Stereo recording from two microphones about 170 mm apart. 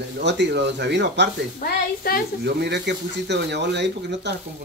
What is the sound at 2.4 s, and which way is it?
Speech, 80° right.